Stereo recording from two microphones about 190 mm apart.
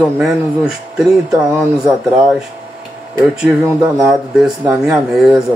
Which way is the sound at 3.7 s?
10° right (ahead or behind).